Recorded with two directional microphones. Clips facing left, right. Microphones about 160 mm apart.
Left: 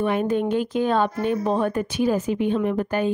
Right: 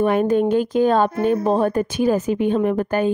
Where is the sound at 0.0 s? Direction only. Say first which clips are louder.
Right 5 dB; 45° right (ahead or behind).